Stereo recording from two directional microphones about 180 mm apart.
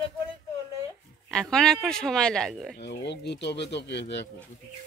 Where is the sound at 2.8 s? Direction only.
70° left (ahead or behind).